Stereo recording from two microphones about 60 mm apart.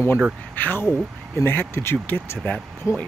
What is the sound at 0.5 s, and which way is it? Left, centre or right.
Speech, left.